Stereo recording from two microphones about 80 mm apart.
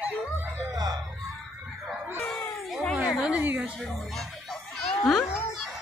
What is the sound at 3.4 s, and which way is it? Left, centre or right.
Speech, centre.